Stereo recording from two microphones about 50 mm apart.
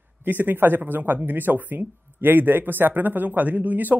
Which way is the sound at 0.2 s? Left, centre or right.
Right.